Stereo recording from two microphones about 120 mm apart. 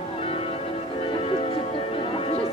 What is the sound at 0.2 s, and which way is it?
Music, 50° left (ahead or behind).